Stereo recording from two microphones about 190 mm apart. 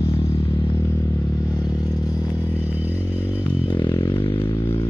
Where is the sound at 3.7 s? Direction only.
25° left (ahead or behind).